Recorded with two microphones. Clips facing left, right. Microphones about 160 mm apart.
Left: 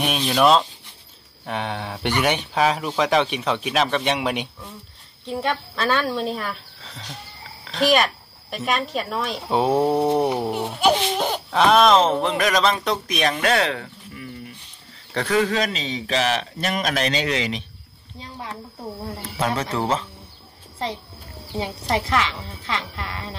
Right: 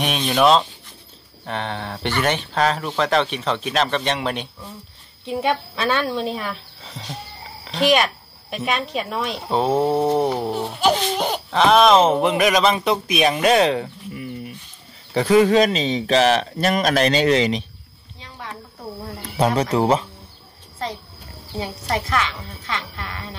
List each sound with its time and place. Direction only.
0.0 s speech: centre (ahead or behind)
5.2 s speech: 5° right (ahead or behind)
9.5 s speech: 15° left (ahead or behind)
9.8 s speech: 5° right (ahead or behind)
11.1 s speech: 5° right (ahead or behind); by 16.0 s 25° right (ahead or behind)
16.1 s speech: 35° right (ahead or behind)
19.3 s speech: 15° right (ahead or behind)
21.5 s a woman's voice: 30° left (ahead or behind)